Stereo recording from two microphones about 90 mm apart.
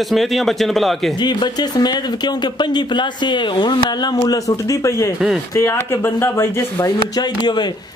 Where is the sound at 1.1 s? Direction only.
55° left (ahead or behind); by 6.6 s 30° left (ahead or behind).